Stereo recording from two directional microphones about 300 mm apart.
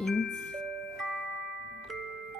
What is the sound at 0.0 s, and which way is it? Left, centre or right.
Music, centre.